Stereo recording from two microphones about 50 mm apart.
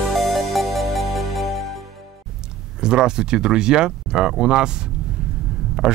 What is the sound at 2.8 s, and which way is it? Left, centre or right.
Speech, centre.